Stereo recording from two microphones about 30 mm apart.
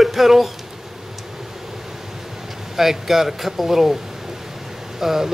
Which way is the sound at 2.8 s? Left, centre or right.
Centre.